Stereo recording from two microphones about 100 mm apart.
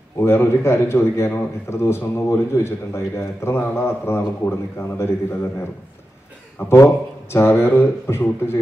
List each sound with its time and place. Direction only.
0.2 s a man's voice: 25° left (ahead or behind)
6.7 s a man's voice: 25° left (ahead or behind)